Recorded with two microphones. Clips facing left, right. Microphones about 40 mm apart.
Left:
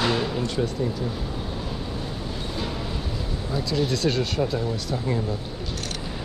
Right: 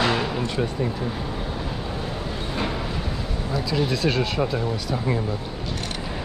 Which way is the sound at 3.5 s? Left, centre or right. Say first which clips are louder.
Right 1 dB; centre.